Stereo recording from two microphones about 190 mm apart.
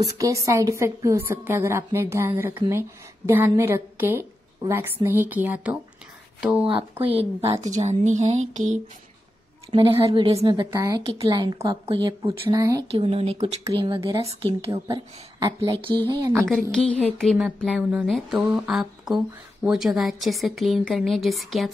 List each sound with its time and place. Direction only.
0.0 s a woman's voice: 15° right (ahead or behind)
6.6 s speech: 30° right (ahead or behind)
7.8 s a sound: 35° right (ahead or behind)
9.7 s speech: 30° right (ahead or behind)
12.9 s a sound: 30° right (ahead or behind)
13.7 s speech: 25° right (ahead or behind)
16.7 s speech: 5° left (ahead or behind)